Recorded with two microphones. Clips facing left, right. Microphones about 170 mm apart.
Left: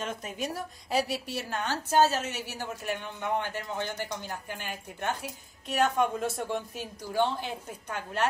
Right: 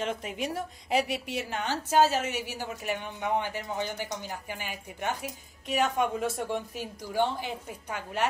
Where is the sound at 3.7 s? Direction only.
15° right (ahead or behind).